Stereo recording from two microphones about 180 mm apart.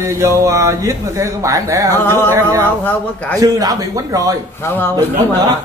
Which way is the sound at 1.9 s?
10° left (ahead or behind).